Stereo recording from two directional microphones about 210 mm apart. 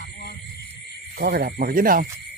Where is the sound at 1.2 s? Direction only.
45° right (ahead or behind).